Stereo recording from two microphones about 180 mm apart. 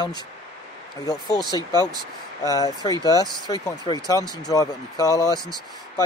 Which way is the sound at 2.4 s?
20° left (ahead or behind).